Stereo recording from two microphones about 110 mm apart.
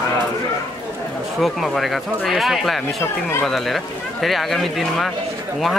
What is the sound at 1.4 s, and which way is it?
Speech, centre (ahead or behind).